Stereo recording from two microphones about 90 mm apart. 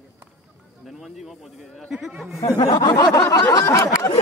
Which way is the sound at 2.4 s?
40° left (ahead or behind).